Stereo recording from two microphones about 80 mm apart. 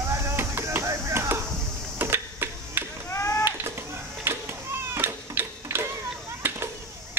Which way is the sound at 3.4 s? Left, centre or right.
Right.